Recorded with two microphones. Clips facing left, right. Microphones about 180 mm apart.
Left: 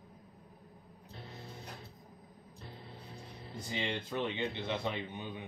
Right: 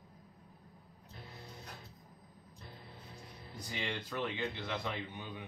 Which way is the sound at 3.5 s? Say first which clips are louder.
Left 3 dB; 25° left (ahead or behind).